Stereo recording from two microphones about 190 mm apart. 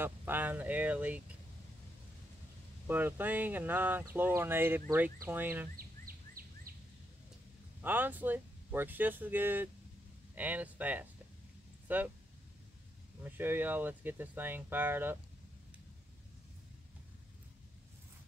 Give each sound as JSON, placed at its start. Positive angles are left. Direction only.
{"t": 0.0, "sound": "speech", "side_deg": -10}
{"t": 2.9, "sound": "speech", "side_deg": -10}
{"t": 5.8, "sound": "a sound", "side_deg": -50}
{"t": 7.8, "sound": "speech", "side_deg": -10}
{"t": 13.2, "sound": "speech", "side_deg": -10}